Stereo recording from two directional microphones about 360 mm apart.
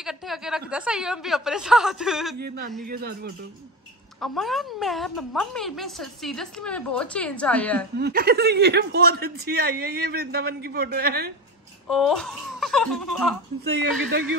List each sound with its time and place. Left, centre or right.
0.0 s a woman's voice: centre
2.3 s speech: right
4.2 s a woman's voice: centre
8.0 s speech: right
11.9 s a woman's voice: centre